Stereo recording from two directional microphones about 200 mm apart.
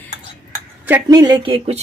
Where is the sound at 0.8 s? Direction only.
15° right (ahead or behind).